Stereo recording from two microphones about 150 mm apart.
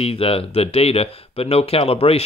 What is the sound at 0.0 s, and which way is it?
Speech, 40° left (ahead or behind).